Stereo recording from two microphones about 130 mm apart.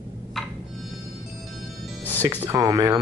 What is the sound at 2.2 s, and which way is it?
Speech, 25° right (ahead or behind).